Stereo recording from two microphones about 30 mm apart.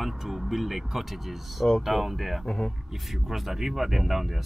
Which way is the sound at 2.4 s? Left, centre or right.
Centre.